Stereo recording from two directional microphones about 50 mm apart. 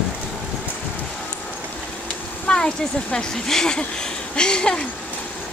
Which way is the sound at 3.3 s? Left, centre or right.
Centre.